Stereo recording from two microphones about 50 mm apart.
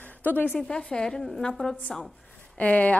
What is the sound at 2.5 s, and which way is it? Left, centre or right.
Speech, left.